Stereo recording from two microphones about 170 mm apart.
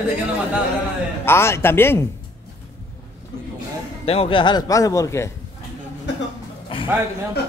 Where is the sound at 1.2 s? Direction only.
15° left (ahead or behind).